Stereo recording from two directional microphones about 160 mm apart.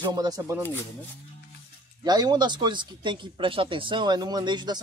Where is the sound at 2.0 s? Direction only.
25° right (ahead or behind).